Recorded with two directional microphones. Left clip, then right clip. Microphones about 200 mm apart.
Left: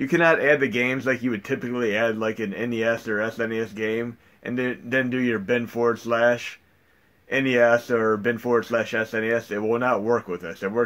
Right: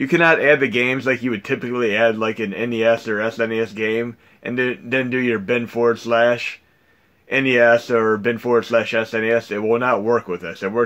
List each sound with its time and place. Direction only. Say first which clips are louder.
0.0 s speech: right 4 dB; 35° right (ahead or behind)